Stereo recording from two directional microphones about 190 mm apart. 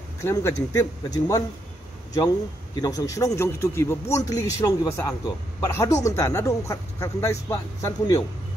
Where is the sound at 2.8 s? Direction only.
20° left (ahead or behind).